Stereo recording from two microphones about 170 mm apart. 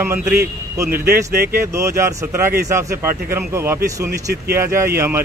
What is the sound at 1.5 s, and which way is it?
Speech, 15° right (ahead or behind).